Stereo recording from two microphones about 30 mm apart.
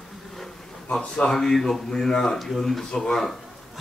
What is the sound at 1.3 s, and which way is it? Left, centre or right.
Speech, centre.